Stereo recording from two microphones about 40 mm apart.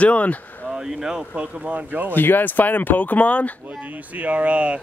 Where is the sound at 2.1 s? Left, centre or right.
Left.